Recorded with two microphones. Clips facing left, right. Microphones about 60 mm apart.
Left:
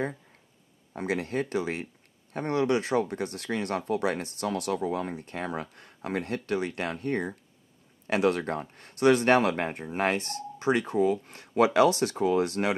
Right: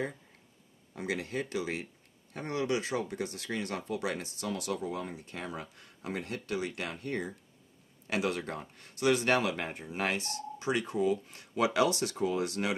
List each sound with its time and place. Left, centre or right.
0.9 s speech: left